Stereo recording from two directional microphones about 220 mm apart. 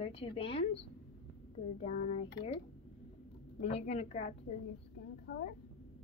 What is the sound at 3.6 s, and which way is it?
Speech, 30° left (ahead or behind).